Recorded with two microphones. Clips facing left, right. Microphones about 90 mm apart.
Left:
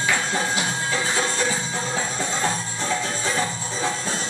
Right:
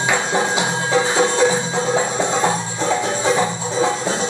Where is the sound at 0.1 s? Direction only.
20° right (ahead or behind).